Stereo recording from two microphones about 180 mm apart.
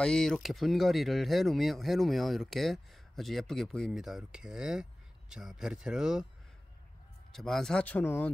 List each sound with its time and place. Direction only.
0.0 s speech: 5° left (ahead or behind)
7.3 s speech: centre (ahead or behind)